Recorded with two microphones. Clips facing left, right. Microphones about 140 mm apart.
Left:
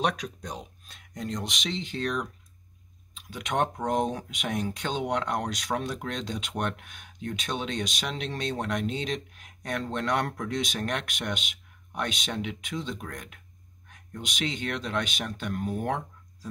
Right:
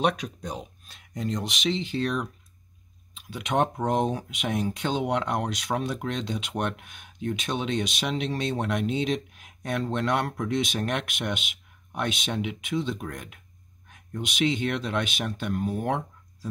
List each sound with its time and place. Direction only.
0.0 s speech: 5° right (ahead or behind)
3.3 s speech: 5° right (ahead or behind)